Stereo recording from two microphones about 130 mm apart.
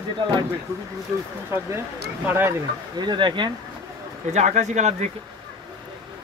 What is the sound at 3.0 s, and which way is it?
Speech, 35° right (ahead or behind).